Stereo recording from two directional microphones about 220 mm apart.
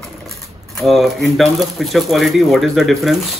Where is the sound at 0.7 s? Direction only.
Centre (ahead or behind).